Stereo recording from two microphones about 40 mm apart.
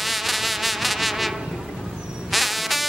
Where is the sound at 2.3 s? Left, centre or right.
Centre.